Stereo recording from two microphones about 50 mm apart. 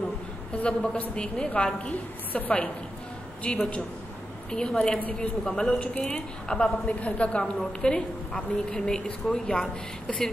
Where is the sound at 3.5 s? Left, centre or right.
Centre.